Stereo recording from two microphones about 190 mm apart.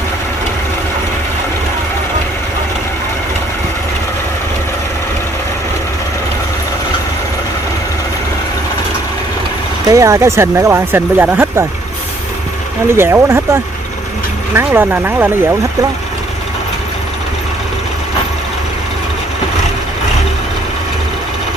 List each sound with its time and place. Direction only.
9.8 s speech: 15° right (ahead or behind)
12.9 s speech: 10° right (ahead or behind)